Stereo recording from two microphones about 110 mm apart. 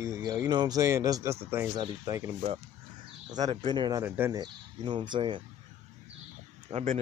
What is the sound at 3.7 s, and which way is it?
Speech, 45° right (ahead or behind).